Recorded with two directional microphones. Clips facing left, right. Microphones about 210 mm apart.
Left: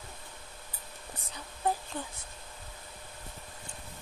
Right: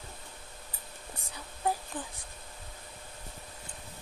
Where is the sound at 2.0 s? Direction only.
15° right (ahead or behind).